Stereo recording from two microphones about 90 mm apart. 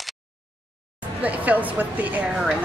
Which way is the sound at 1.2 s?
15° right (ahead or behind).